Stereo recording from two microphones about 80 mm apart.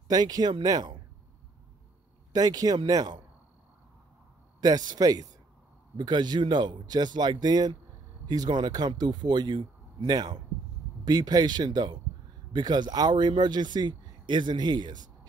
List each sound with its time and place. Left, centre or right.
0.1 s speech: right
2.3 s speech: right
4.6 s speech: right
5.9 s speech: right